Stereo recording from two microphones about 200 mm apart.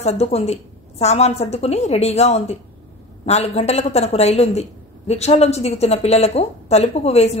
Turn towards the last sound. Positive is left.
turn(degrees=30)  # may be behind; listen again after turning